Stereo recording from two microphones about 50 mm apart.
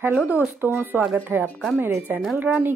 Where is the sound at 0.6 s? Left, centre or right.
Right.